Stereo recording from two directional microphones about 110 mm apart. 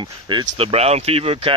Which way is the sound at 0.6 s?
70° right (ahead or behind).